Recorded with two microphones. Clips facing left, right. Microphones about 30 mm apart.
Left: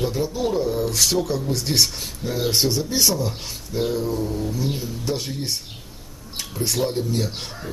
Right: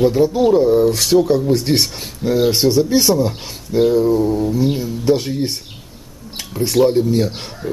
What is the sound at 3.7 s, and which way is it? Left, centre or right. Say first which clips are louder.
Speech: right 10 dB; right.